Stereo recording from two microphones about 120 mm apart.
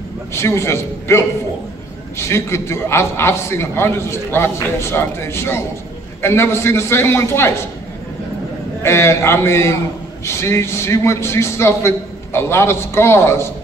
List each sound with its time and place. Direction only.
0.3 s a man's voice: 20° left (ahead or behind)
8.8 s a man's voice: 20° left (ahead or behind)